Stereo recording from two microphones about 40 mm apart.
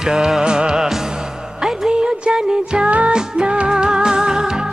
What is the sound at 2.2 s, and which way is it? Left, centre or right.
Music, right.